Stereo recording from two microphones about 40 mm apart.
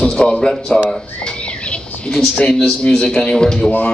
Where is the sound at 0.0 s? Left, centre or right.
Left.